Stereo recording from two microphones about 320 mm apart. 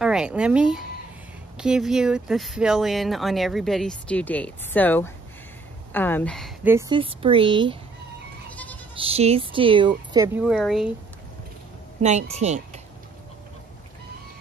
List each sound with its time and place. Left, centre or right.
0.0 s speech: centre
8.9 s speech: centre
12.0 s speech: right